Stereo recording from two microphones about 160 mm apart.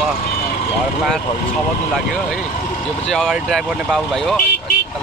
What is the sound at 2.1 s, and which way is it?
Speech, centre (ahead or behind).